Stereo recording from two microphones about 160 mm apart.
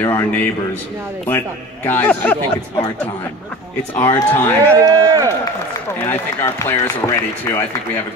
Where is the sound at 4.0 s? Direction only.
15° left (ahead or behind).